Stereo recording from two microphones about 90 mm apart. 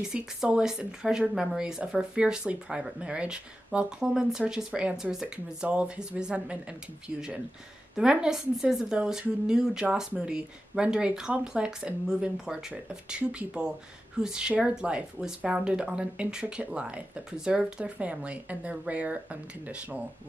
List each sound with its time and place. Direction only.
0.0 s speech: 5° right (ahead or behind)
7.9 s speech: 10° right (ahead or behind)